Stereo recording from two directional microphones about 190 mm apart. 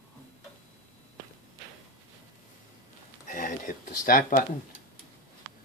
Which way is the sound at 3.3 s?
45° left (ahead or behind).